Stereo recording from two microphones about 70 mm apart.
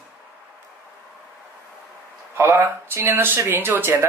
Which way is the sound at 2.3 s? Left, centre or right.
Right.